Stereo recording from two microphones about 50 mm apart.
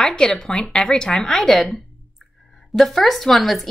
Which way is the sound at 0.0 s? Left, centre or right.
Centre.